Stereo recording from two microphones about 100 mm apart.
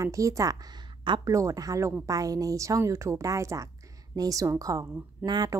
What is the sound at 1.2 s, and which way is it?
A woman's voice, 30° right (ahead or behind).